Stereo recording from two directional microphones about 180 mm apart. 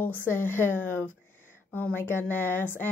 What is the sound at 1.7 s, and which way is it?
A woman's voice, 10° left (ahead or behind).